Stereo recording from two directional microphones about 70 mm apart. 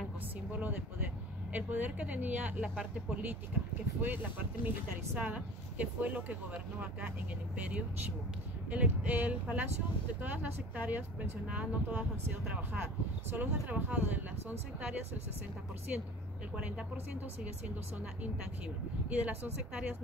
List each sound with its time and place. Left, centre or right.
0.5 s speech: right
13.4 s speech: right
15.9 s speech: right
19.0 s speech: right